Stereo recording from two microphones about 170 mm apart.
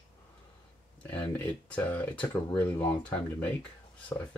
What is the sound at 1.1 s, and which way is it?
Speech, 10° left (ahead or behind).